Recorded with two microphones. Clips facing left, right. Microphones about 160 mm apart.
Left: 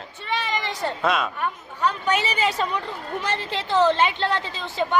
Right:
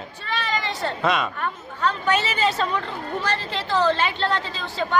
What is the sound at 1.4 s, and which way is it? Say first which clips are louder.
A woman's voice: left 1 dB; 15° left (ahead or behind).